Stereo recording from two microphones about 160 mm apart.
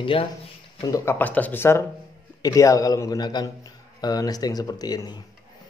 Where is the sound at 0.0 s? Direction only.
35° left (ahead or behind).